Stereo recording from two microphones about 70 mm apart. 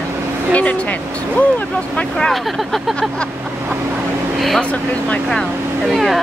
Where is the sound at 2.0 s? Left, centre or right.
Centre.